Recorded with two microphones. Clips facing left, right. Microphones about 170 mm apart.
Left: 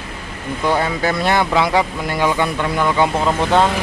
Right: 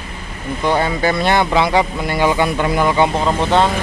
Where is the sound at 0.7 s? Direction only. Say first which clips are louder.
Right 2 dB; centre (ahead or behind).